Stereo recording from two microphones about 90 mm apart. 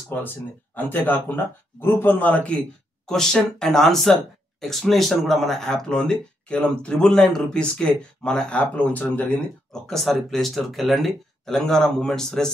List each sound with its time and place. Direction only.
0.1 s speech: 20° left (ahead or behind)